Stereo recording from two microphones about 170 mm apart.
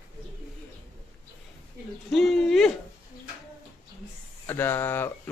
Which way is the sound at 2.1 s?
Centre (ahead or behind).